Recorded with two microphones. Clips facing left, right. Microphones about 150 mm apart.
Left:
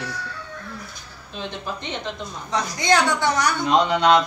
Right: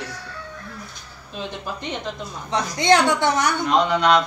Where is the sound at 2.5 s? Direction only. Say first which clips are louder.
Right 3 dB; 25° right (ahead or behind).